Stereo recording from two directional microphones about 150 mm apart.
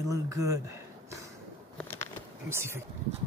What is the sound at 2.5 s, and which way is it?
Speech, 15° right (ahead or behind).